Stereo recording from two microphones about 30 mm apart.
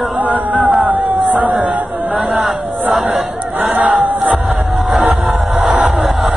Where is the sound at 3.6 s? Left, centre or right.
Right.